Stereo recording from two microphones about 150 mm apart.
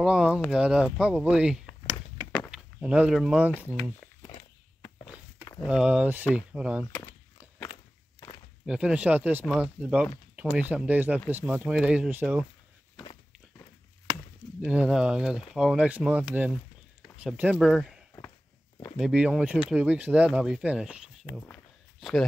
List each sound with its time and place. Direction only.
0.0 s speech: 5° right (ahead or behind)
3.5 s speech: 15° left (ahead or behind)
5.7 s speech: 5° right (ahead or behind)
8.6 s speech: 5° right (ahead or behind)
12.9 s walk: 35° left (ahead or behind)
14.6 s speech: 5° right (ahead or behind)
17.6 s speech: 5° left (ahead or behind)
18.9 s speech: 5° right (ahead or behind)